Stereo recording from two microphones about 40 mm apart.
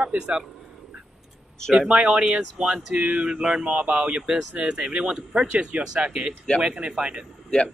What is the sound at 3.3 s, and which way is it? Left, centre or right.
Speech, right.